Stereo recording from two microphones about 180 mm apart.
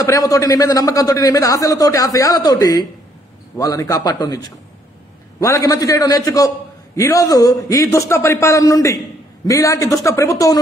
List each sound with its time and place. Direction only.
0.0 s a man's voice: 20° left (ahead or behind)